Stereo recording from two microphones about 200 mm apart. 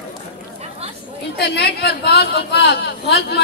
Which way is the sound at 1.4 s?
55° left (ahead or behind).